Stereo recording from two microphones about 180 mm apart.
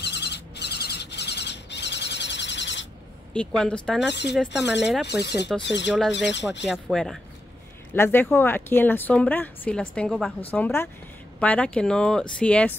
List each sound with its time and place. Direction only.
0.0 s a sound: 70° left (ahead or behind)
3.3 s speech: 5° left (ahead or behind)
4.1 s speech: 75° left (ahead or behind)
5.6 s speech: 80° left
6.6 s a woman's voice: centre (ahead or behind)